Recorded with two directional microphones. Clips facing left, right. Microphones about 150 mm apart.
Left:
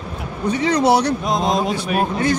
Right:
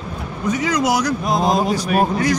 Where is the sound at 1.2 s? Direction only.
5° right (ahead or behind).